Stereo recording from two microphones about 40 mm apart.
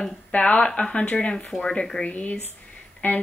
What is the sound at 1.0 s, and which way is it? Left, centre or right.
Speech, left.